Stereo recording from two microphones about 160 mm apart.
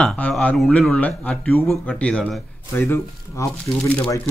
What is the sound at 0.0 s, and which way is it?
Speech, 5° left (ahead or behind).